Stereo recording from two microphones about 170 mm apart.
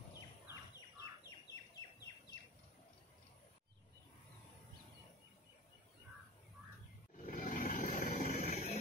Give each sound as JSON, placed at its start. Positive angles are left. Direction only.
{"t": 0.1, "sound": "a sound", "side_deg": 20}
{"t": 1.5, "sound": "bird", "side_deg": 25}
{"t": 7.2, "sound": "vehicle", "side_deg": 50}